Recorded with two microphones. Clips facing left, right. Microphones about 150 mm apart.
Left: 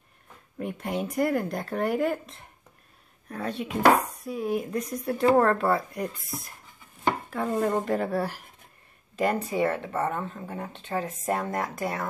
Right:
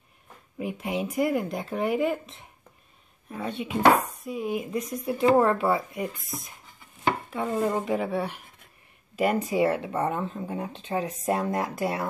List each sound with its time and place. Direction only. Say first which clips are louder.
0.6 s speech: right 1 dB; 5° right (ahead or behind)
9.1 s speech: right 2 dB; 10° right (ahead or behind)
11.6 s speech: right 2 dB; 5° right (ahead or behind)